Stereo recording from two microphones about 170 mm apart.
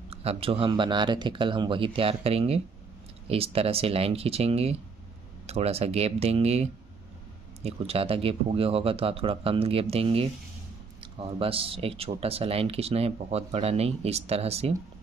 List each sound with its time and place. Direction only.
0.1 s speech: 35° right (ahead or behind)